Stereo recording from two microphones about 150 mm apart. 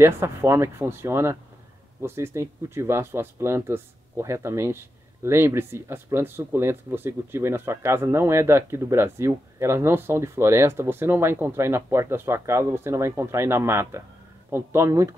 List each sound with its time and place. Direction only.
0.0 s speech: 15° right (ahead or behind)